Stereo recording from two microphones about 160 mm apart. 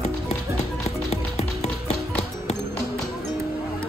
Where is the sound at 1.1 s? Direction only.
40° left (ahead or behind).